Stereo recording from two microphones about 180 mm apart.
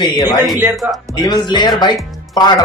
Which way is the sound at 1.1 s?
25° left (ahead or behind).